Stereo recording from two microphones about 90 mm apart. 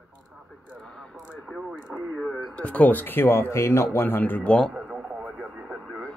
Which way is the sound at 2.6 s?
15° left (ahead or behind).